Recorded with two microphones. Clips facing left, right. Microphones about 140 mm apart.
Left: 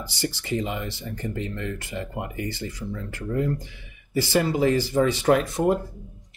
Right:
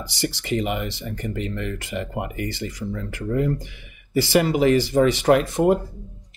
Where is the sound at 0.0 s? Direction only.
90° right.